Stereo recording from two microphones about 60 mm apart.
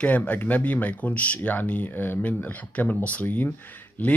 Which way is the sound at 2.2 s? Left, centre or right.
Left.